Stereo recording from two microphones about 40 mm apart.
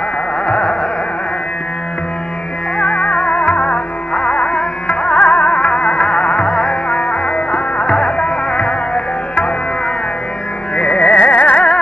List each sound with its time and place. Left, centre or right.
0.5 s carnatic music: left
2.8 s music: left
10.8 s carnatic music: left